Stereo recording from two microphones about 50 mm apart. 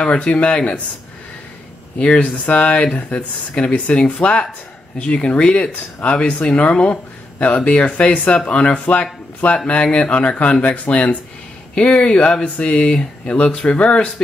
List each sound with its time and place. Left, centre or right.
0.0 s speech: left
2.0 s speech: left